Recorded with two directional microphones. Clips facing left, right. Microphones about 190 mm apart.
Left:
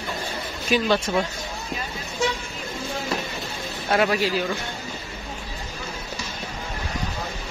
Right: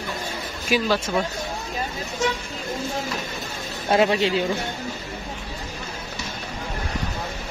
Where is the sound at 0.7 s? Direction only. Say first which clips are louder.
Left 1 dB; 5° right (ahead or behind).